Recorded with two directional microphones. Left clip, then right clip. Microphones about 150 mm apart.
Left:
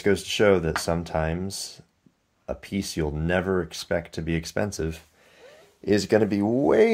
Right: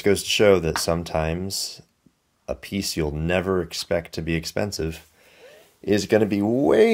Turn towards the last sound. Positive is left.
turn(degrees=-25)  # may be behind; listen again after turning